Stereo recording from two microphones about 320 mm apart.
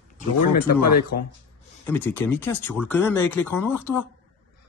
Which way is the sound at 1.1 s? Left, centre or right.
Left.